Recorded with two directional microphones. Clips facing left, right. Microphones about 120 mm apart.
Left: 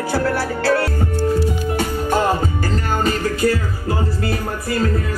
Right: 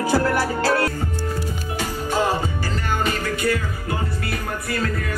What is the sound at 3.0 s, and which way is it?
Music, 40° left (ahead or behind).